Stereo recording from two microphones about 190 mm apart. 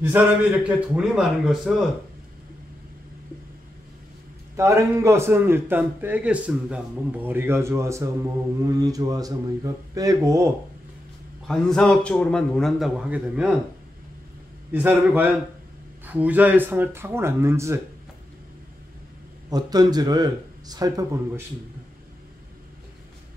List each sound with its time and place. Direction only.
0.0 s a man's voice: 10° right (ahead or behind)
4.6 s a man's voice: 15° right (ahead or behind)
11.4 s a man's voice: centre (ahead or behind)
14.7 s a man's voice: 10° right (ahead or behind)
19.5 s speech: 20° right (ahead or behind)